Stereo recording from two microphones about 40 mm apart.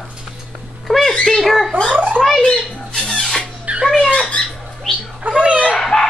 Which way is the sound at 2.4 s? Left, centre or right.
Centre.